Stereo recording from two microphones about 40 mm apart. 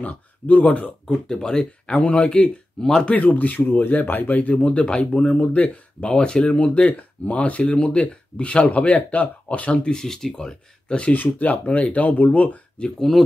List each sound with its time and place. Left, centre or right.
0.0 s speech: left
1.0 s speech: centre
2.0 s speech: left
2.8 s speech: centre
3.1 s speech: left
6.0 s speech: centre
6.6 s speech: left
9.8 s speech: centre
10.3 s speech: left
11.1 s speech: left
11.6 s speech: left
13.1 s speech: centre